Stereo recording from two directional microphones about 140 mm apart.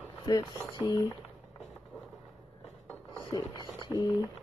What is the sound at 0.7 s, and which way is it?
Speech, 30° left (ahead or behind).